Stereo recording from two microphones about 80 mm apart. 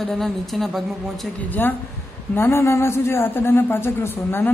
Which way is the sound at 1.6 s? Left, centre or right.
Left.